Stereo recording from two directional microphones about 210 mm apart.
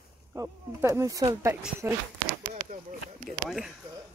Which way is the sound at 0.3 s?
15° right (ahead or behind).